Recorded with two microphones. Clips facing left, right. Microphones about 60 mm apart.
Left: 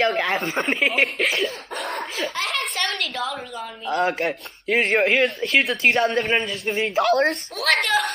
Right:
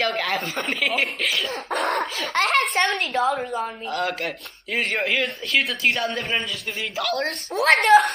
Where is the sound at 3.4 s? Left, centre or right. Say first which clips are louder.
Right 6 dB; right.